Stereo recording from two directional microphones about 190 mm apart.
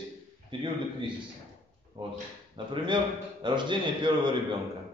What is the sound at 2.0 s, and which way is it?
A man's voice, 30° right (ahead or behind).